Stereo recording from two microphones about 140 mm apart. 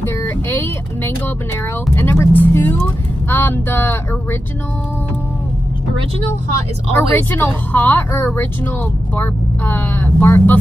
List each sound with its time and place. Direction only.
0.0 s speech: 15° left (ahead or behind)
7.0 s speech: 15° left (ahead or behind)